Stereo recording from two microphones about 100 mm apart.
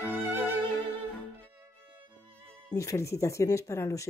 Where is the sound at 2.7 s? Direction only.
30° left (ahead or behind).